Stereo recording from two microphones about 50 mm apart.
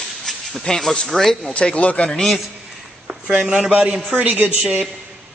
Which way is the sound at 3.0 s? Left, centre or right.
Centre.